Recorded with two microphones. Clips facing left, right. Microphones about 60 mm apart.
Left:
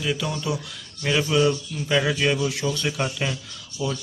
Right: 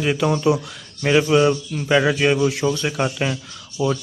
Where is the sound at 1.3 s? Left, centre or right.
Right.